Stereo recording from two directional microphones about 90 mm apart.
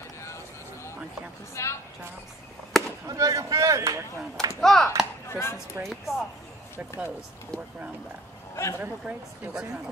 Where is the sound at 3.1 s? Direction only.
40° right (ahead or behind).